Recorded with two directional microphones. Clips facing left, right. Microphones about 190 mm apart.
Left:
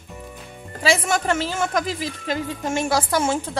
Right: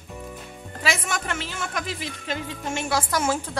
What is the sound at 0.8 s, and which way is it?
Speech, 35° left (ahead or behind).